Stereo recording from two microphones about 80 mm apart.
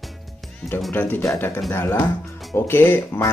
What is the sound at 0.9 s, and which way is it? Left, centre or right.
Speech, left.